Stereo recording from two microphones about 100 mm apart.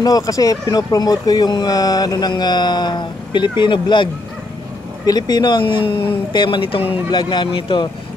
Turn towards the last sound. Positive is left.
turn(degrees=50)  # may be behind; listen again after turning